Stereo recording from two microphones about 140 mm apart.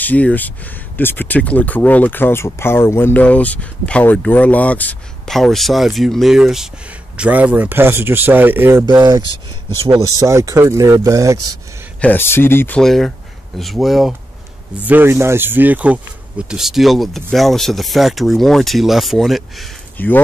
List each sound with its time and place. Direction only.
0.0 s speech: 10° left (ahead or behind); by 8.8 s 15° right (ahead or behind)
8.8 s speech: 30° right (ahead or behind)
12.0 s speech: 15° left (ahead or behind)
12.8 s speech: centre (ahead or behind)
14.9 s speech: 15° right (ahead or behind); by 19.7 s centre (ahead or behind)
20.0 s speech: 15° left (ahead or behind)